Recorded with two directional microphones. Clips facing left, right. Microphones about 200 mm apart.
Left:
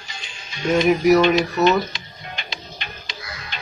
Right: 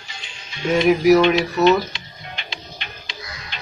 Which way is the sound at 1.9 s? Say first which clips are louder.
Left 1 dB; 45° left (ahead or behind).